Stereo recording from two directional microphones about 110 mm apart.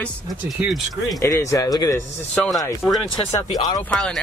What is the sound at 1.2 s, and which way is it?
Speech, 30° left (ahead or behind).